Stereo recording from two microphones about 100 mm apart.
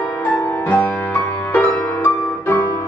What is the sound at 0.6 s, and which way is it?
Music, 20° left (ahead or behind).